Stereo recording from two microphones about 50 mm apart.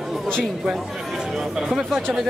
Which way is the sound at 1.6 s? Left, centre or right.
Centre.